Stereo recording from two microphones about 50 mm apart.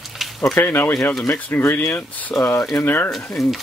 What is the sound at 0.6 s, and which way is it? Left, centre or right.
Speech, left.